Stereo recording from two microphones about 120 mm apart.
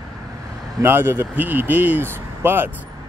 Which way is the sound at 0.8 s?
15° right (ahead or behind).